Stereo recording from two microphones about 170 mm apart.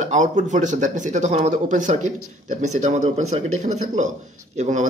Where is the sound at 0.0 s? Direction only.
45° right (ahead or behind).